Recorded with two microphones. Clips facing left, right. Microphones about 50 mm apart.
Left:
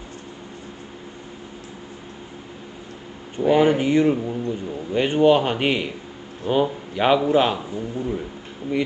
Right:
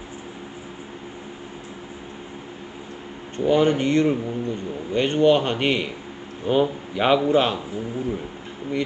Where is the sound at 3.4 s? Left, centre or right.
Centre.